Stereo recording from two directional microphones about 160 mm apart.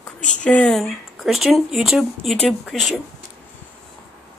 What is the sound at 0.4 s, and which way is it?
Speech, 5° left (ahead or behind).